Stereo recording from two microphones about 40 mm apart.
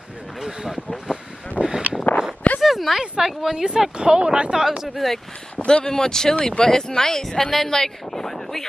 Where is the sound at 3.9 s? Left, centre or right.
Right.